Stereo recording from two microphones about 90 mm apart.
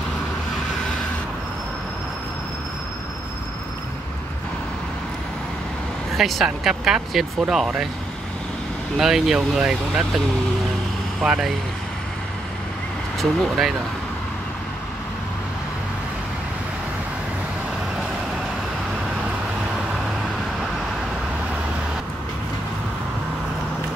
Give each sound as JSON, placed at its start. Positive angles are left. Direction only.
{"t": 6.1, "sound": "speech", "side_deg": 0}
{"t": 8.9, "sound": "speech", "side_deg": -5}
{"t": 13.2, "sound": "speech", "side_deg": 0}